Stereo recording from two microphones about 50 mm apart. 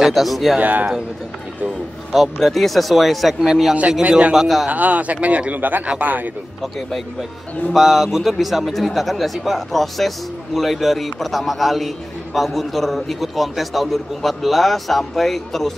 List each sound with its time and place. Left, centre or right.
0.0 s a man's voice: centre
0.6 s speech: right
2.4 s a man's voice: centre
4.6 s speech: right
7.7 s a man's voice: centre